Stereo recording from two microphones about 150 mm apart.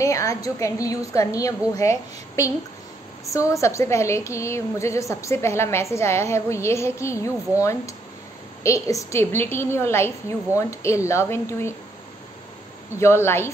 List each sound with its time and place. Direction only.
0.0 s a woman's voice: 20° left (ahead or behind)
12.9 s a woman's voice: 15° left (ahead or behind)